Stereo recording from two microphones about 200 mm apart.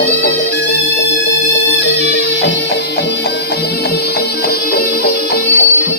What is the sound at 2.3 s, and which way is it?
Music, 60° left (ahead or behind).